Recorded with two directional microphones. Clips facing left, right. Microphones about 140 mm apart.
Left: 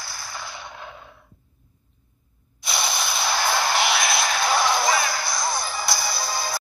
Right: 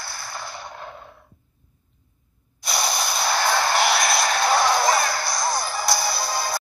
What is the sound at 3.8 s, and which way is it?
Music, 45° right (ahead or behind).